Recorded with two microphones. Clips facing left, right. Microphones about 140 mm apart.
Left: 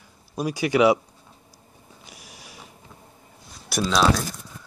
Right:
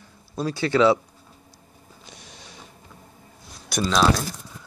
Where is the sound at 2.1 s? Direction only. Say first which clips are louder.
Even; 10° left (ahead or behind).